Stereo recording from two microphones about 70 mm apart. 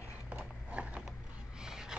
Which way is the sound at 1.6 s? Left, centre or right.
Centre.